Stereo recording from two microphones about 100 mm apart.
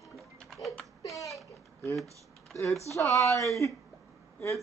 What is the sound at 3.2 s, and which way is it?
Speech, 30° left (ahead or behind).